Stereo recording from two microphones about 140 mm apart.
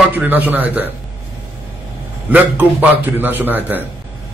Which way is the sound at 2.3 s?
10° right (ahead or behind).